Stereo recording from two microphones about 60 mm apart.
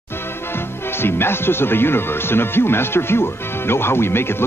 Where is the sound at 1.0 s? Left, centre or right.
Left.